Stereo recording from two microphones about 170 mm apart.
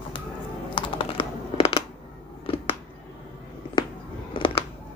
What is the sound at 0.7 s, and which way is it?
Computer keyboard, 30° left (ahead or behind).